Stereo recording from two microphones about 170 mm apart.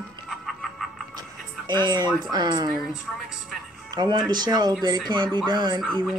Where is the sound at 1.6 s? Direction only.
25° right (ahead or behind).